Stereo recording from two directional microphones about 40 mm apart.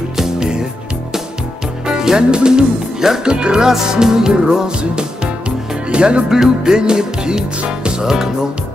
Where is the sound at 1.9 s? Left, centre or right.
Centre.